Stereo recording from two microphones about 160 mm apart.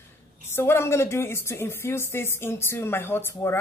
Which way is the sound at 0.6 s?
15° left (ahead or behind).